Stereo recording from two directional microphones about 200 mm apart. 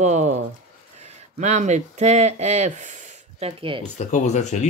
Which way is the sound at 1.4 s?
35° right (ahead or behind).